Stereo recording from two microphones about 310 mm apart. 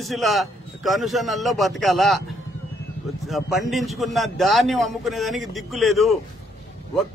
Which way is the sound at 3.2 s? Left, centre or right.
Centre.